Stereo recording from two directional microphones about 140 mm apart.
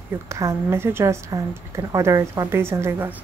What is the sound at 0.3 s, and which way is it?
A woman's voice, 20° right (ahead or behind).